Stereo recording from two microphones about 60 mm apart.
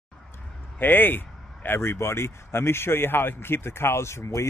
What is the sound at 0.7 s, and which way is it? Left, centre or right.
Speech, left.